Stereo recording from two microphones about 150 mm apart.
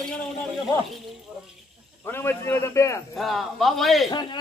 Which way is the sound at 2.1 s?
15° left (ahead or behind).